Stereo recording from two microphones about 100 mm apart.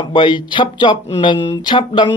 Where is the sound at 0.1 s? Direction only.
55° left (ahead or behind).